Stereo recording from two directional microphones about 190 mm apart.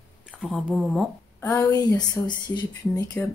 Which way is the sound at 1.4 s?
15° left (ahead or behind).